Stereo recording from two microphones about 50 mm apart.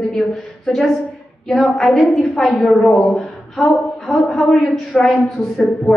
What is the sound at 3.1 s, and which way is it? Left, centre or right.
Speech, left.